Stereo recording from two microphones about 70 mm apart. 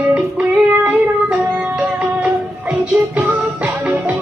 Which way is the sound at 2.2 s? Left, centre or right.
Right.